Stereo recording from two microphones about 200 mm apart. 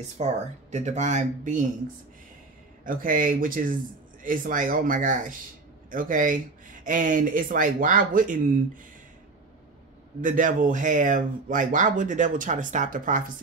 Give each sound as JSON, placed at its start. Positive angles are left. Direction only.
{"t": 0.2, "sound": "speech", "side_deg": -35}
{"t": 2.8, "sound": "speech", "side_deg": -45}
{"t": 10.2, "sound": "speech", "side_deg": -40}